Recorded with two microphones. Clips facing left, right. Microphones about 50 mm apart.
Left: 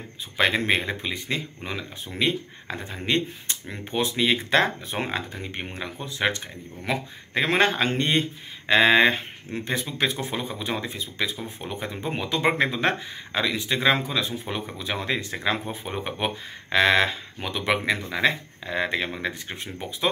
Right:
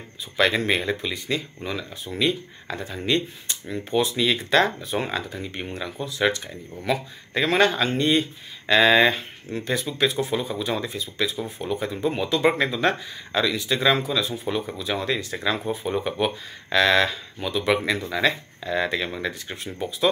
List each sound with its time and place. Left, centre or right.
0.4 s speech: left
8.6 s speech: left